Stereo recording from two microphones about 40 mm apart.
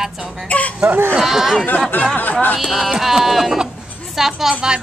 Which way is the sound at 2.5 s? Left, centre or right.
Centre.